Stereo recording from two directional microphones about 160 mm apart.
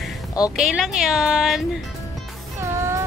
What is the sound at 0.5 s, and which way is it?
Speech, 5° right (ahead or behind).